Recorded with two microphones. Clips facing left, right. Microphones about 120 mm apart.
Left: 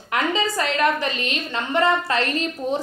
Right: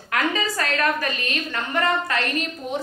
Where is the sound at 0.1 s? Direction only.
20° left (ahead or behind).